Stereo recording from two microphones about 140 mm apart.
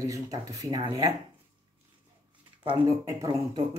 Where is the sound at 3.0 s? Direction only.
25° right (ahead or behind).